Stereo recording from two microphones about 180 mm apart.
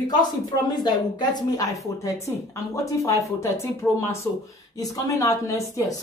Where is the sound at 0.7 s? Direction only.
20° left (ahead or behind).